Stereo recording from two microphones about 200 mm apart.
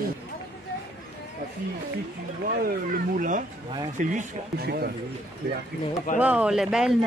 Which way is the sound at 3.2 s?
40° right (ahead or behind).